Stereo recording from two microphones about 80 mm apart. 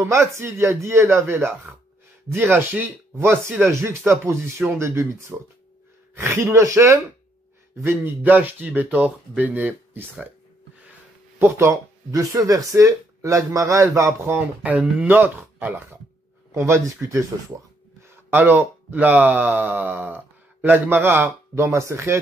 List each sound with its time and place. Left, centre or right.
0.0 s speech: right
7.8 s speech: right
11.3 s speech: right
12.1 s speech: right
14.6 s speech: centre
16.5 s speech: right
18.3 s speech: right
21.7 s speech: right